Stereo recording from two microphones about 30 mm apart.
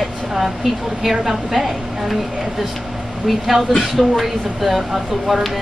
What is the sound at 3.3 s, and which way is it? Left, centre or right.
Speech, centre.